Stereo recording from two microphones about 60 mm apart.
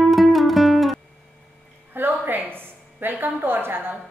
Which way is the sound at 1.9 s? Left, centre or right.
Right.